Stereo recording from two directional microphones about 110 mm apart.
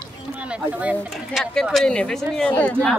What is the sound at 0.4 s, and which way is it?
Speech, 10° right (ahead or behind).